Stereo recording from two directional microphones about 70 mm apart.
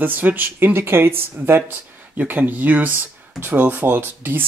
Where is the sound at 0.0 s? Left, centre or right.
Right.